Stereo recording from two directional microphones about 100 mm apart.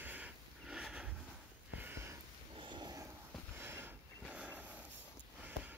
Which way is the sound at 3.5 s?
25° right (ahead or behind).